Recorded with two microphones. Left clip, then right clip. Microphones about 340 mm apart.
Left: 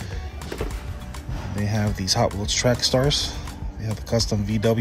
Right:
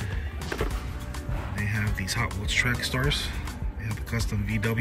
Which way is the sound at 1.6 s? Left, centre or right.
Centre.